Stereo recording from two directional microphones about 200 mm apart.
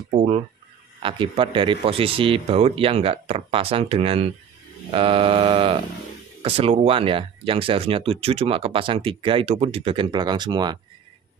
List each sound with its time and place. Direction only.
0.1 s speech: 35° right (ahead or behind)